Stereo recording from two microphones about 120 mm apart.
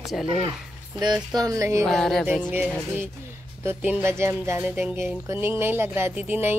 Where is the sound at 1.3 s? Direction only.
30° right (ahead or behind).